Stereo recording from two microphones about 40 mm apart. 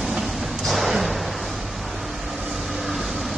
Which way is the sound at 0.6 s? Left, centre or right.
Centre.